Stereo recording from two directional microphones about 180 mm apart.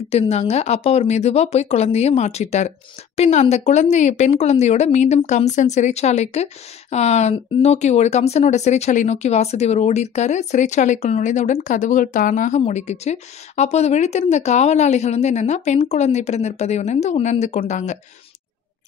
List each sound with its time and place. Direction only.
0.1 s speech: 35° left (ahead or behind)